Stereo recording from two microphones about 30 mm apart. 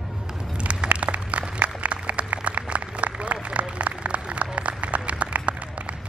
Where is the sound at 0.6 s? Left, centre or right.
Right.